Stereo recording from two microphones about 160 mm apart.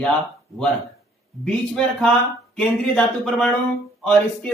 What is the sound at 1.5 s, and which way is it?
Speech, 5° left (ahead or behind).